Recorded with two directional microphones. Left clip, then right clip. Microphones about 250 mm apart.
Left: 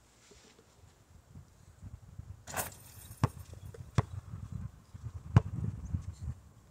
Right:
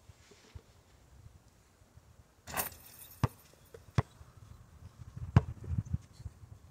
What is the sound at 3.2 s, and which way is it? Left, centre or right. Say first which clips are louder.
Chop: left 1 dB; centre.